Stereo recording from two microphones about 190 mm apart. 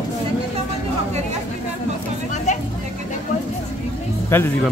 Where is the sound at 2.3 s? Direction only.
40° left (ahead or behind).